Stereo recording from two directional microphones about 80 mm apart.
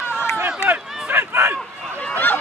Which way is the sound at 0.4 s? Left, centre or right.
Right.